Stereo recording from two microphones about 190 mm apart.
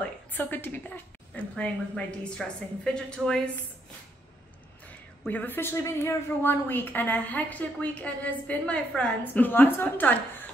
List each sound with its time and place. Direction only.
0.3 s a woman's voice: 10° left (ahead or behind)
5.2 s a woman's voice: 10° left (ahead or behind)